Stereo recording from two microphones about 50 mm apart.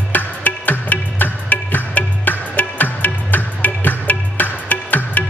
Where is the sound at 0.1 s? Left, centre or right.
Left.